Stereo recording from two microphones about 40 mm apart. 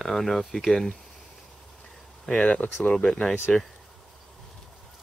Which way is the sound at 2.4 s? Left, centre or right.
Left.